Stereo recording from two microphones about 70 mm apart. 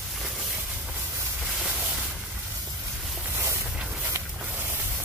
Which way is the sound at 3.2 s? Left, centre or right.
Right.